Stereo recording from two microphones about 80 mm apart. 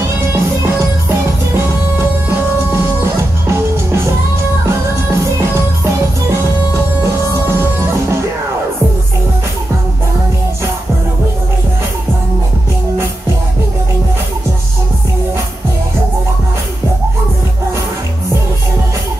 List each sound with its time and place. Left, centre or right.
0.3 s music: right
3.4 s music: right
7.5 s music: right